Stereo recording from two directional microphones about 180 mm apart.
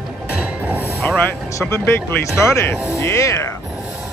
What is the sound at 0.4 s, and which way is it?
Mechanisms, 10° right (ahead or behind).